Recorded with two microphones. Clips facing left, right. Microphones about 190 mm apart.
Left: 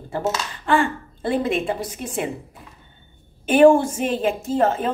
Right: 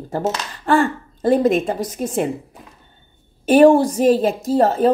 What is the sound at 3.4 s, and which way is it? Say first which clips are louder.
A woman's voice: right 2 dB; 40° right (ahead or behind).